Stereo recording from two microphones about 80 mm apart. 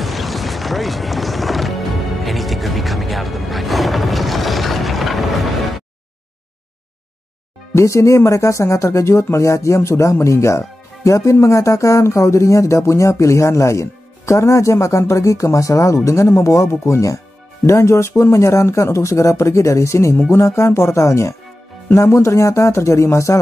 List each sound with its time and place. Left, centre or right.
0.0 s music: centre
7.7 s speech: left